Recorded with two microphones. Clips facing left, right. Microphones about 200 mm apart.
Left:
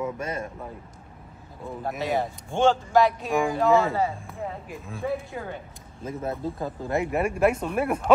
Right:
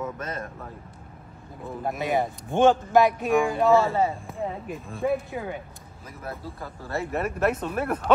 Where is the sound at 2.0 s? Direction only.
20° right (ahead or behind).